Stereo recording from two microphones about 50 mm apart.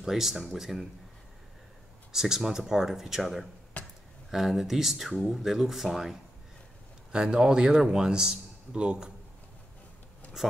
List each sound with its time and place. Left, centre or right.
0.0 s speech: centre
2.1 s a man's voice: centre
3.8 s a sound: left
4.3 s speech: centre
7.1 s a man's voice: centre
10.4 s a man's voice: centre